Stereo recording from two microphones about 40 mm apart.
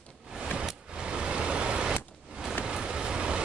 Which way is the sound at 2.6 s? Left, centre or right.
Right.